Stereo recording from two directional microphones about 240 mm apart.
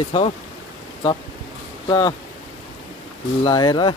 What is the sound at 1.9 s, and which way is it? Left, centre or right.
Speech, centre.